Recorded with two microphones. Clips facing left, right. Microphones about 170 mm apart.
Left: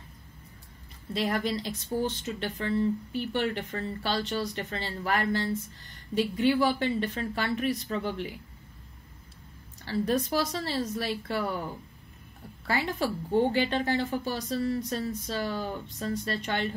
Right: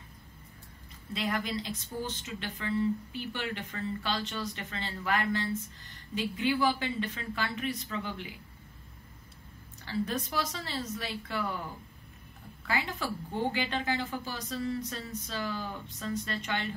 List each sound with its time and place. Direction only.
1.1 s a woman's voice: 35° left (ahead or behind)
9.8 s a woman's voice: 35° left (ahead or behind)
12.6 s a woman's voice: 35° left (ahead or behind)